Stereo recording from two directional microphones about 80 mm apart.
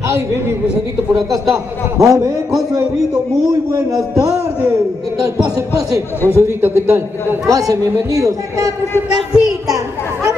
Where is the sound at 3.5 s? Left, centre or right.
Right.